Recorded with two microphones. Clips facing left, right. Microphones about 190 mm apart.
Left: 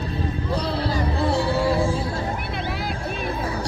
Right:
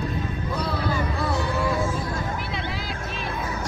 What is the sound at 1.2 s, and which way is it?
Music, 30° left (ahead or behind).